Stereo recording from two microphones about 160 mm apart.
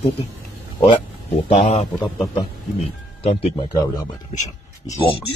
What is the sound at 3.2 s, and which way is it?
Speech, 35° left (ahead or behind).